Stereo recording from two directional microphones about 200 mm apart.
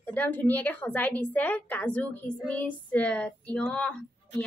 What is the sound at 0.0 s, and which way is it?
A woman's voice, 10° left (ahead or behind).